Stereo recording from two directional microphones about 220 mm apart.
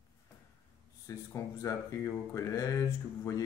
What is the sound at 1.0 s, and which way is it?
Speech, 15° left (ahead or behind).